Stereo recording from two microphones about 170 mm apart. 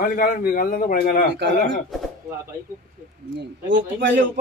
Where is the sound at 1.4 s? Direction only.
90° right.